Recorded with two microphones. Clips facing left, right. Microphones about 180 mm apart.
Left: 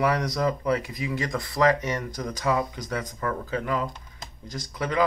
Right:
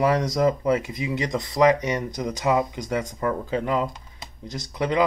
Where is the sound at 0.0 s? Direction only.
25° right (ahead or behind).